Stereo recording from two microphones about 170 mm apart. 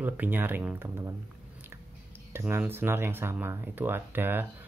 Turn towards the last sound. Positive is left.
turn(degrees=-10)  # may be behind; listen again after turning